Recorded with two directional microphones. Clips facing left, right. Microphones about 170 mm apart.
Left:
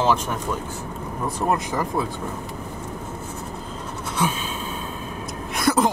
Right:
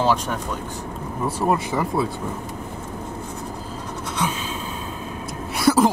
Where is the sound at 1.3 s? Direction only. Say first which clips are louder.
Right 1 dB; 5° right (ahead or behind).